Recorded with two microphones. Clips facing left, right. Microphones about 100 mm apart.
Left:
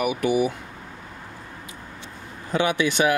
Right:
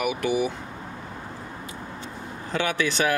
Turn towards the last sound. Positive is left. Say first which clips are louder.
# left 3 dB
turn(degrees=15)  # may be behind; listen again after turning